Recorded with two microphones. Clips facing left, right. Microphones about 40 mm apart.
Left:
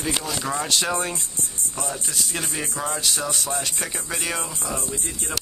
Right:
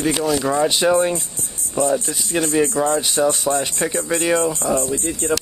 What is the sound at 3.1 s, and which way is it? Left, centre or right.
Speech, centre.